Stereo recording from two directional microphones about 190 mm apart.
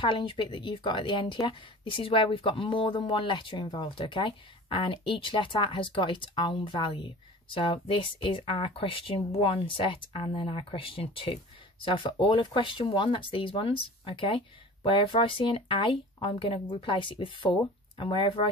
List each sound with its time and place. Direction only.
0.0 s speech: 25° left (ahead or behind)